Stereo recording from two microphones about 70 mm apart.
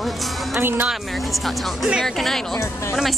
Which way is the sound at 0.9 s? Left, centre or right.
Centre.